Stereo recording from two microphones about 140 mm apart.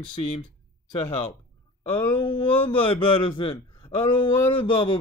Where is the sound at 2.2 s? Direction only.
40° left (ahead or behind).